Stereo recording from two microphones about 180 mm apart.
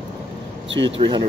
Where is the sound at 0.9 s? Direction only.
25° right (ahead or behind).